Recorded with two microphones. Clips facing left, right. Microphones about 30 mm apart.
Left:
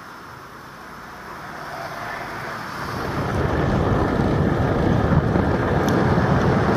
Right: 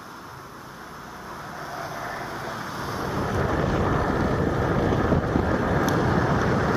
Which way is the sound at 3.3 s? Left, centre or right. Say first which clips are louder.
Left 3 dB; centre.